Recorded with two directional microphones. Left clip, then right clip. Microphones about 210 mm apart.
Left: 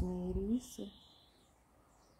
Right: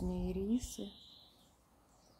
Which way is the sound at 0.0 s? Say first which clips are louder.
Even; 5° left (ahead or behind).